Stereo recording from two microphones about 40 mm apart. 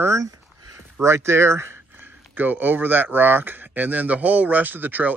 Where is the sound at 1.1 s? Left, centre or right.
Right.